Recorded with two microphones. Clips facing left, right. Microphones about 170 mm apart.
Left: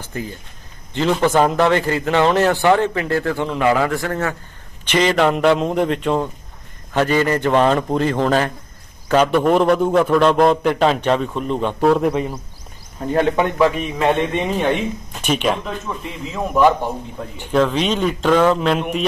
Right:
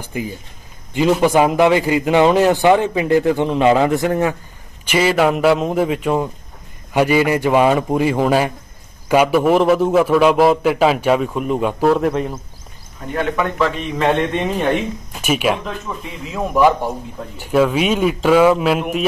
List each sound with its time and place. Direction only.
0.0 s a man's voice: 15° right (ahead or behind)
13.1 s speech: 30° left (ahead or behind)
13.6 s a man's voice: 15° left (ahead or behind)
14.0 s a man's voice: centre (ahead or behind)